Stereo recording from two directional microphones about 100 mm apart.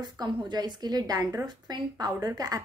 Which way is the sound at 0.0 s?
45° right (ahead or behind).